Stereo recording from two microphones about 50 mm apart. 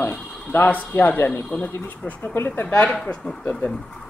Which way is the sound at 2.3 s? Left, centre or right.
Left.